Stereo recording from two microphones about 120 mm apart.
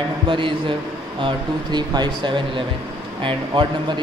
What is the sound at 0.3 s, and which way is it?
A man's voice, 45° right (ahead or behind).